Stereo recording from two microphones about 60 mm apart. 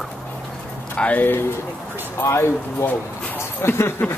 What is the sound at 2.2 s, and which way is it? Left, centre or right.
Speech, left.